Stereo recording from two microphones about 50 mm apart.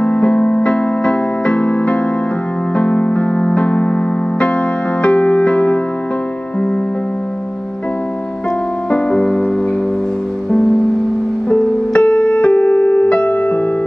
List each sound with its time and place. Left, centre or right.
0.0 s music: left
2.8 s electric piano: left
8.9 s music: centre
11.4 s music: left